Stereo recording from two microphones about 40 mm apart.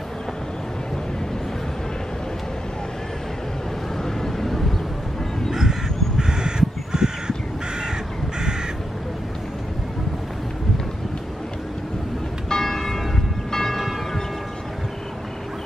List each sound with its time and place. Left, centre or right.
4.0 s vehicle: centre
5.5 s crow: centre
12.4 s church bell: centre